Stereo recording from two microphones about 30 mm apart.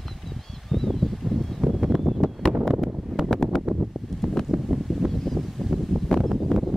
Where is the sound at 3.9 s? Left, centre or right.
Centre.